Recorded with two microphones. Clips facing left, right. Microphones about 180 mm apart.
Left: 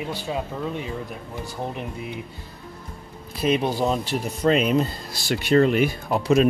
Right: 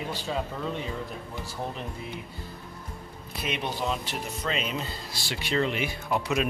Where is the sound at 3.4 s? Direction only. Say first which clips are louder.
Left 10 dB; 35° left (ahead or behind).